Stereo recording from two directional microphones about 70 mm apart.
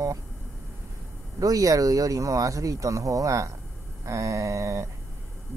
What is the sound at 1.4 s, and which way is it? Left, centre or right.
Speech, right.